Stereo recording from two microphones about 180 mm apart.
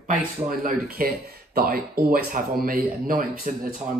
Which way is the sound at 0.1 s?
50° right (ahead or behind).